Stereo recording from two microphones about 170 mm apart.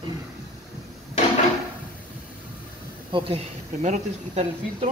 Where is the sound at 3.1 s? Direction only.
40° right (ahead or behind).